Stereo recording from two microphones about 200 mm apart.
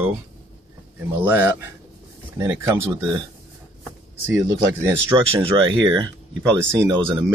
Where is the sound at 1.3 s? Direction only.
10° right (ahead or behind).